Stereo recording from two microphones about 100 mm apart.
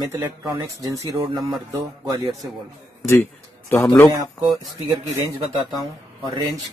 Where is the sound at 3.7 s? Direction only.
20° left (ahead or behind).